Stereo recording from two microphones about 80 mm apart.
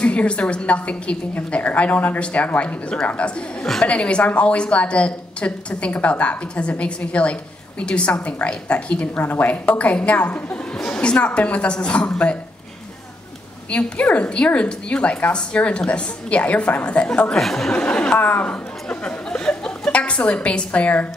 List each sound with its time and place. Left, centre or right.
0.0 s a woman's voice: centre
13.7 s a woman's voice: centre
17.4 s speech: centre
17.7 s speech: centre